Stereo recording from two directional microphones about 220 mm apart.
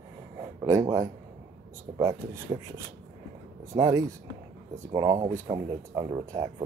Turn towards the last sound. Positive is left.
turn(degrees=-20)  # may be behind; listen again after turning